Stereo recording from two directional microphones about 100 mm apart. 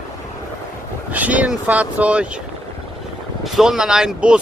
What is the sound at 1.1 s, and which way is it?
Speech, 15° right (ahead or behind).